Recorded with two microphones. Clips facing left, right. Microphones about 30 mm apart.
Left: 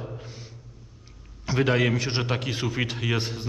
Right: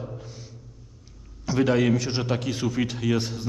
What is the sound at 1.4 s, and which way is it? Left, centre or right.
A man's voice, centre.